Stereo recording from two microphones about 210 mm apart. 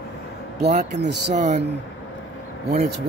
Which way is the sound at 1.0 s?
55° right (ahead or behind).